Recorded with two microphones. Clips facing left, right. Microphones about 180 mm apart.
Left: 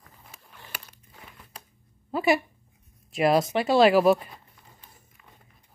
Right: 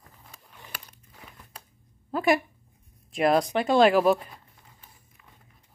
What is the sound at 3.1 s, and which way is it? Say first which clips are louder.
Speech: left 1 dB; 5° left (ahead or behind).